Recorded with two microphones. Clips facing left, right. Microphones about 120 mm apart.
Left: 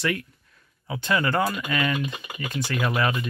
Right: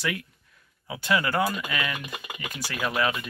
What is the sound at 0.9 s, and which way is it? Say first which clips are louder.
Speech: left 2 dB; 5° right (ahead or behind).